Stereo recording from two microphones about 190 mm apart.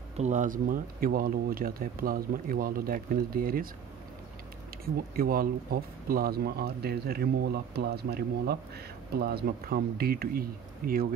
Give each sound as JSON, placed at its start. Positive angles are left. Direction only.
{"t": 0.2, "sound": "speech", "side_deg": -40}
{"t": 5.1, "sound": "speech", "side_deg": -50}